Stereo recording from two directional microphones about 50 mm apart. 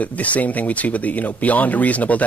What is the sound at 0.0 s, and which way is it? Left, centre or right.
Speech, left.